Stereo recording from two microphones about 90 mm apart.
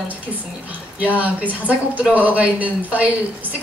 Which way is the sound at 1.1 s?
20° right (ahead or behind).